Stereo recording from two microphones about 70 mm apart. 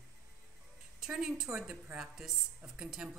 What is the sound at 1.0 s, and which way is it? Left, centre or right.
A woman's voice, centre.